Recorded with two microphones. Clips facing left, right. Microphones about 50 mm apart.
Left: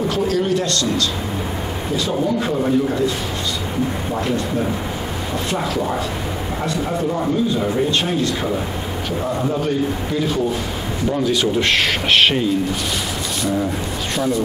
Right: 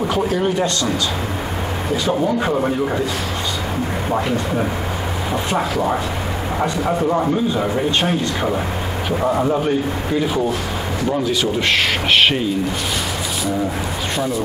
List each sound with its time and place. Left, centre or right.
0.1 s speech: centre
2.5 s speech: right
5.3 s speech: centre
9.2 s speech: right
11.2 s speech: centre
14.1 s speech: centre